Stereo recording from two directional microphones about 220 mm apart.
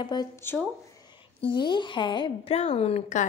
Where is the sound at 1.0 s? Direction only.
20° left (ahead or behind).